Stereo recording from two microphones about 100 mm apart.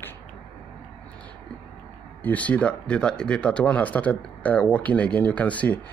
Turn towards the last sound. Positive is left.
turn(degrees=15)  # may be behind; listen again after turning